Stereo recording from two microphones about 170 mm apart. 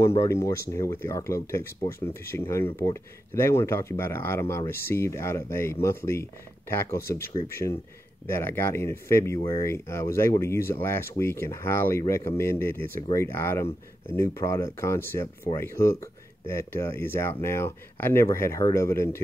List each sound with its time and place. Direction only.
0.2 s speech: 15° left (ahead or behind)